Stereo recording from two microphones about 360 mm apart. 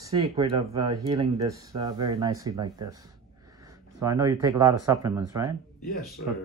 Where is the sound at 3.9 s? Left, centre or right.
Centre.